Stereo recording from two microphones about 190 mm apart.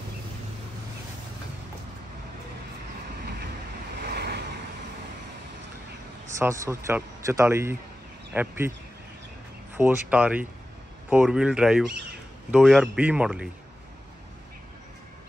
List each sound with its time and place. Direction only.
4.0 s vehicle: 60° right (ahead or behind)
6.3 s a man's voice: 15° right (ahead or behind)
9.8 s a man's voice: 10° right (ahead or behind)